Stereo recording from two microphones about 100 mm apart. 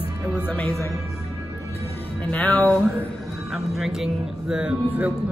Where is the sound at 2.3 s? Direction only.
15° left (ahead or behind).